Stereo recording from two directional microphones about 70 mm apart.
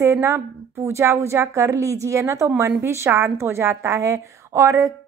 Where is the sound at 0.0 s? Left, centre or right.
Right.